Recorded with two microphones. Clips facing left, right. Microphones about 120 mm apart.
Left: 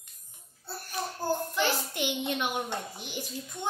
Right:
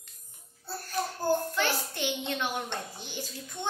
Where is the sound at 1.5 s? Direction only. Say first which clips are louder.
Left 1 dB; 15° left (ahead or behind).